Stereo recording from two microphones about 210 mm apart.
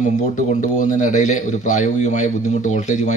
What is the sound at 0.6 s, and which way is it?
Speech, 35° left (ahead or behind).